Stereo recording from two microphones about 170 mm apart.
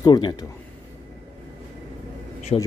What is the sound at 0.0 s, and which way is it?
Speech, 25° left (ahead or behind).